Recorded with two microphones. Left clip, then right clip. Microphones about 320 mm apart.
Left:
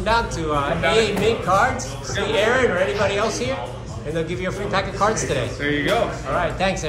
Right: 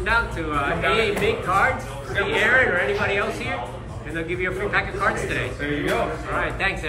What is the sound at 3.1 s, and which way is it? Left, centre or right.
A man's voice, centre.